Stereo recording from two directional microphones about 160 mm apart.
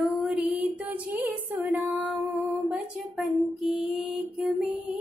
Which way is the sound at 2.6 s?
5° right (ahead or behind).